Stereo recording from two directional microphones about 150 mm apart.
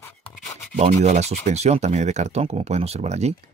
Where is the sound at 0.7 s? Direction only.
50° right (ahead or behind).